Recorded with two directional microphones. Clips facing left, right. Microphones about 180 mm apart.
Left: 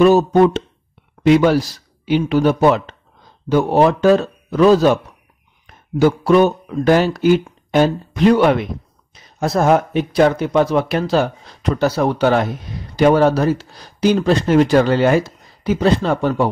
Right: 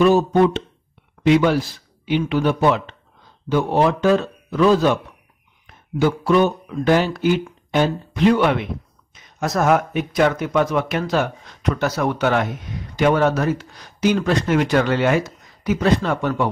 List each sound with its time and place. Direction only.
0.0 s a man's voice: 40° left (ahead or behind)